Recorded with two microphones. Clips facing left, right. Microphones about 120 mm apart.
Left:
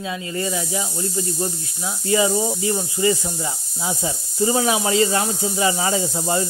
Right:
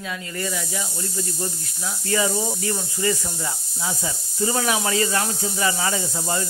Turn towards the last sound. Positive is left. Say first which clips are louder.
# left 4 dB
turn(degrees=20)  # may be behind; listen again after turning